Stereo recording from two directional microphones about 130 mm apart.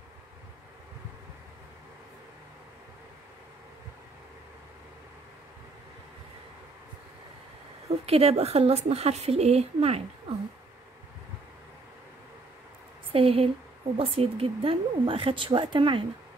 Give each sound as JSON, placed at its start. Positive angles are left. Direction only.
{"t": 8.0, "sound": "a woman's voice", "side_deg": -50}
{"t": 13.1, "sound": "a woman's voice", "side_deg": -45}